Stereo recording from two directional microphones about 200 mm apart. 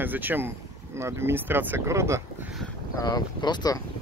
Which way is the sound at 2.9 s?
20° left (ahead or behind).